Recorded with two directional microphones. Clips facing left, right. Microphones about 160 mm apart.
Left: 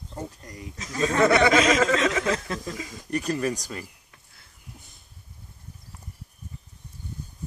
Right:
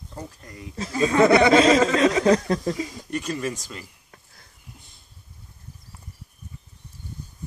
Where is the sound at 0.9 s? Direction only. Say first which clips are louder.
Right 4 dB; 15° right (ahead or behind).